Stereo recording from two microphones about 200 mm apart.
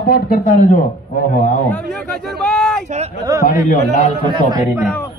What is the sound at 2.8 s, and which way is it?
Speech, 35° right (ahead or behind).